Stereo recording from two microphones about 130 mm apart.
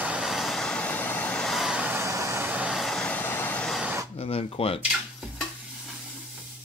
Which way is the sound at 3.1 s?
15° left (ahead or behind).